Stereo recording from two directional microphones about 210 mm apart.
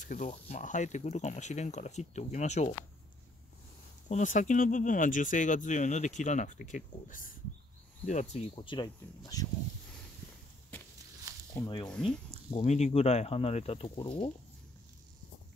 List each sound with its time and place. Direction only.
0.0 s speech: 35° left (ahead or behind)
4.1 s speech: 35° left (ahead or behind); by 9.5 s 20° left (ahead or behind)
11.5 s speech: 20° left (ahead or behind)
11.9 s speech: 5° left (ahead or behind)
12.5 s speech: 30° left (ahead or behind)